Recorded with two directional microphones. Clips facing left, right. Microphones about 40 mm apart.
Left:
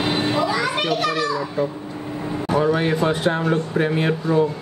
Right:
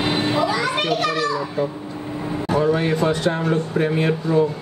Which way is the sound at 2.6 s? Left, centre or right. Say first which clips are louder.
Even; left.